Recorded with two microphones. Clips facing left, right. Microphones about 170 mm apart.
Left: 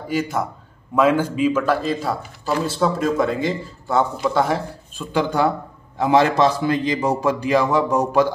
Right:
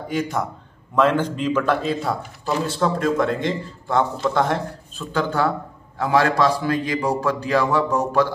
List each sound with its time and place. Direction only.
0.1 s a man's voice: 5° left (ahead or behind)